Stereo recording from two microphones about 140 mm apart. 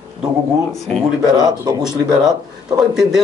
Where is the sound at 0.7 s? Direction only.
Centre (ahead or behind).